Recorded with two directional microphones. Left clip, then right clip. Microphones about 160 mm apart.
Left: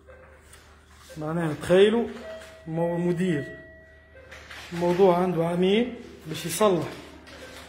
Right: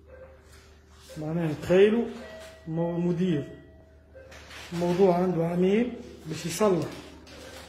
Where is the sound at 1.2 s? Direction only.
10° left (ahead or behind).